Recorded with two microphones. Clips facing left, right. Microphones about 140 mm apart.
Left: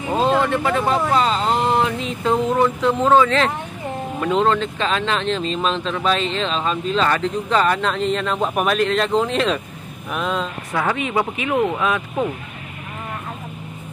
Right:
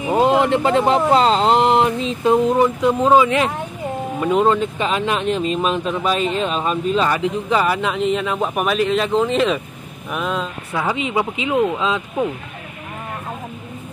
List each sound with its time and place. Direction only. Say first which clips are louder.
0.0 s speech: right 3 dB; 15° right (ahead or behind)